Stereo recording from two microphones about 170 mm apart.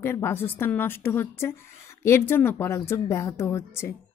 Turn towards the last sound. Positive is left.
turn(degrees=15)  # may be behind; listen again after turning